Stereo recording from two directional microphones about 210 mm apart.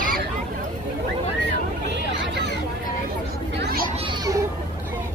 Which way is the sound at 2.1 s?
60° right (ahead or behind).